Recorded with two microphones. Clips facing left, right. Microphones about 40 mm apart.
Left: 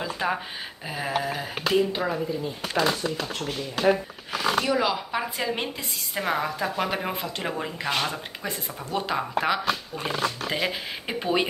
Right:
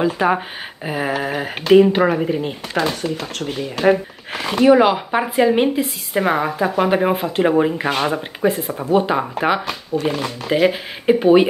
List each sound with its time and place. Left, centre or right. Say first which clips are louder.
0.0 s speech: right 10 dB; right
4.3 s speech: right 10 dB; right; by 11.4 s centre